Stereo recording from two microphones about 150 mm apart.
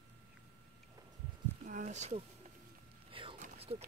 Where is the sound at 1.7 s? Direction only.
55° right (ahead or behind).